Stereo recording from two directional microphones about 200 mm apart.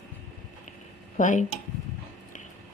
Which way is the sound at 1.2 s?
40° left (ahead or behind).